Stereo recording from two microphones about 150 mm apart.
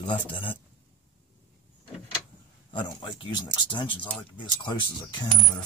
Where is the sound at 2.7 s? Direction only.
35° left (ahead or behind).